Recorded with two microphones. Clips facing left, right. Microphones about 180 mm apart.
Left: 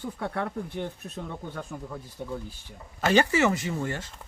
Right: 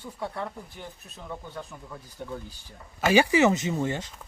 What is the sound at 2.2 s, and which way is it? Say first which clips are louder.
Speech: left 1 dB; 10° left (ahead or behind).